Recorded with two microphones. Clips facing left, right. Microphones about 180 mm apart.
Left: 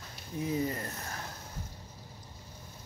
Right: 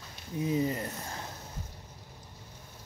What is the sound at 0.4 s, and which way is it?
Speech, 20° right (ahead or behind).